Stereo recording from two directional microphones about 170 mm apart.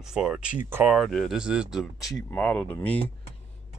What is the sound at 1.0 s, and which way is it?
Speech, centre (ahead or behind).